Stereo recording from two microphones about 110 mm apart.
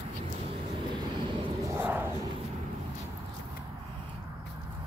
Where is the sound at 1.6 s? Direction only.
15° right (ahead or behind).